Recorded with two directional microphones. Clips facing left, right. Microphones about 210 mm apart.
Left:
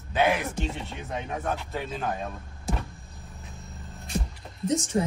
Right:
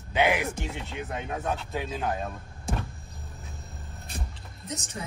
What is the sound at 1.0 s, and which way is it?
Speech, centre (ahead or behind).